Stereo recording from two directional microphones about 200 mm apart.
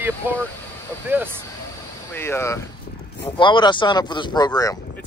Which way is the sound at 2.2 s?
10° left (ahead or behind).